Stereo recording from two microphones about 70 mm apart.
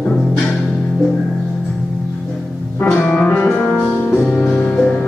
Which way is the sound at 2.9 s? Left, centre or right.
Centre.